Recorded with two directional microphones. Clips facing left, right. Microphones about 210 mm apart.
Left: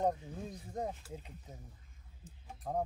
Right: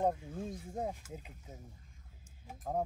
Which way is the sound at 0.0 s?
5° right (ahead or behind).